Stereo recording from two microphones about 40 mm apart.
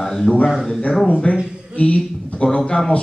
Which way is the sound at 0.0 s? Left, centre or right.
Centre.